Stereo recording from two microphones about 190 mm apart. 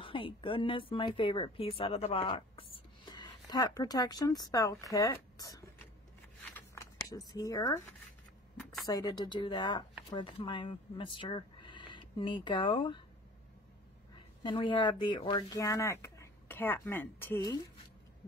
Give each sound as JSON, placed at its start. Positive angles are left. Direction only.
{"t": 0.0, "sound": "speech", "side_deg": 25}
{"t": 6.4, "sound": "a sound", "side_deg": 10}
{"t": 7.2, "sound": "speech", "side_deg": 20}
{"t": 8.8, "sound": "speech", "side_deg": 20}
{"t": 14.1, "sound": "speech", "side_deg": 25}